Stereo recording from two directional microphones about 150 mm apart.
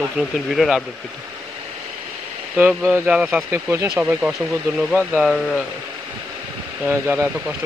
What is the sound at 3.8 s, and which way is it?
Speech, 5° right (ahead or behind).